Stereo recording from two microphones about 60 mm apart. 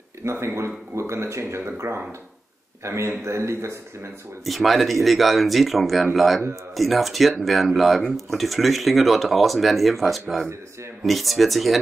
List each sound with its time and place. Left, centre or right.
0.2 s speech: right
4.5 s speech: centre